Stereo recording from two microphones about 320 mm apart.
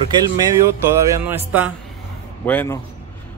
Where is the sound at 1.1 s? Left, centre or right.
Centre.